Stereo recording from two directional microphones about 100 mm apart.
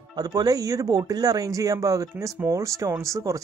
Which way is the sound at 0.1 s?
40° right (ahead or behind).